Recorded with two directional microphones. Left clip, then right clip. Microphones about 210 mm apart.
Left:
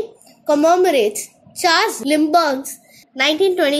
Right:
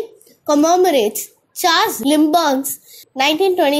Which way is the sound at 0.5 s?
20° right (ahead or behind).